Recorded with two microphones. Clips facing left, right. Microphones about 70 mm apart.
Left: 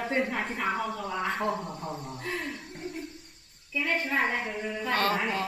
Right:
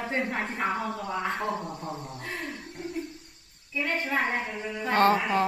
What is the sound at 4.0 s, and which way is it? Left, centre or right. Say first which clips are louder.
Speech: even; centre.